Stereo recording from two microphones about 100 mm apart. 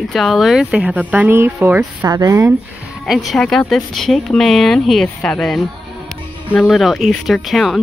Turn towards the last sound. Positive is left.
turn(degrees=0)  # may be behind; listen again after turning